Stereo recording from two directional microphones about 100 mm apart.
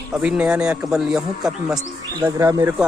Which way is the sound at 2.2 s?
30° right (ahead or behind).